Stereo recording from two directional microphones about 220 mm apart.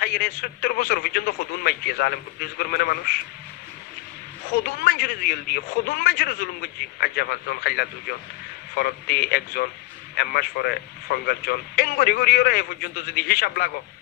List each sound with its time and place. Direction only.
0.0 s speech: 45° left (ahead or behind)
4.8 s speech: 45° left (ahead or behind)